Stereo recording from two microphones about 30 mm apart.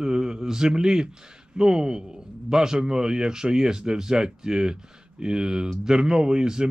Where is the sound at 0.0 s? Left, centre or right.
Right.